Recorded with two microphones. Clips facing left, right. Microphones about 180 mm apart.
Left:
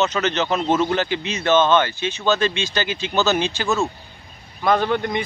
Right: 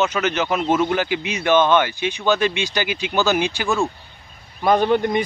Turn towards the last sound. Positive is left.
turn(degrees=-15)  # may be behind; listen again after turning